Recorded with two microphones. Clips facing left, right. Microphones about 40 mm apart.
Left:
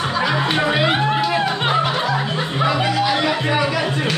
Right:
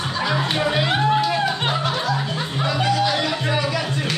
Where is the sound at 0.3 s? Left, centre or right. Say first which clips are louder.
Left 1 dB; centre.